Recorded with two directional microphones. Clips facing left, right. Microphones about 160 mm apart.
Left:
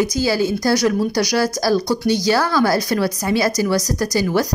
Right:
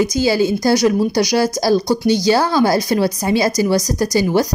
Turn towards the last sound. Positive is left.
turn(degrees=-20)  # may be behind; listen again after turning